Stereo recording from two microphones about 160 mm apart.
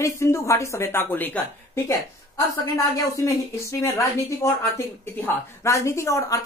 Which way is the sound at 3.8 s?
15° left (ahead or behind).